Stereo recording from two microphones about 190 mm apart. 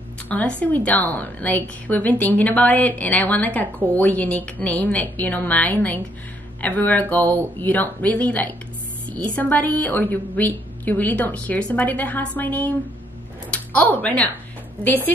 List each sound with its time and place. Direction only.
0.3 s a woman's voice: 10° left (ahead or behind)